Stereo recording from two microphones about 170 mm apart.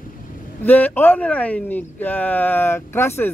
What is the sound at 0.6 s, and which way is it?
Speech, 10° left (ahead or behind).